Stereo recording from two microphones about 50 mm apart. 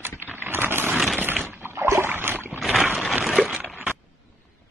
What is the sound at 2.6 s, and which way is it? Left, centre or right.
Boat, centre.